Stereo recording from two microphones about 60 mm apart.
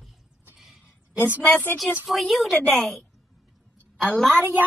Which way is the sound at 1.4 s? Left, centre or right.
Left.